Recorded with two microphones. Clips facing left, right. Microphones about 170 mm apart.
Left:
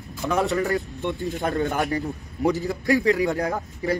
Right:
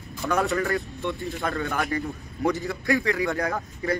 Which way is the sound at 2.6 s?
15° left (ahead or behind).